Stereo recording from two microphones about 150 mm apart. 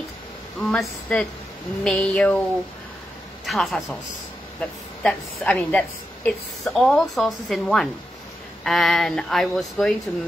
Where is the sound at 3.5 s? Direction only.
Centre (ahead or behind).